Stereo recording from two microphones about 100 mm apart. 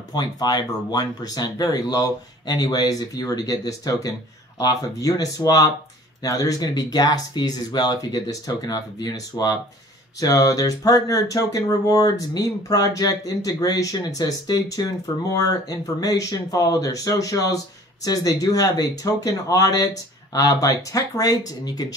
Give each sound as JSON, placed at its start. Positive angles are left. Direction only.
{"t": 0.1, "sound": "speech", "side_deg": 40}